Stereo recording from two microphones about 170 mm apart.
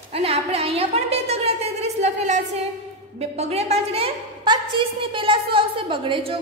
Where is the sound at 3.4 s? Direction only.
40° right (ahead or behind).